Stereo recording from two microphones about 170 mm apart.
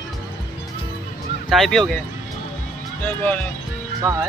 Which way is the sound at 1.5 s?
Centre (ahead or behind).